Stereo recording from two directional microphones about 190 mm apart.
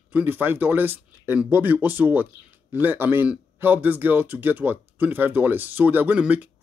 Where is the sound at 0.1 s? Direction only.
10° right (ahead or behind).